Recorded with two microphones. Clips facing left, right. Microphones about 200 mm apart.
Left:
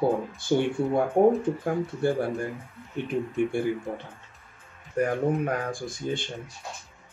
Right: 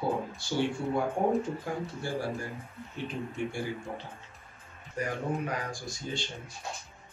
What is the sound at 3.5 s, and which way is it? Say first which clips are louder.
Speech: left 10 dB; 55° left (ahead or behind).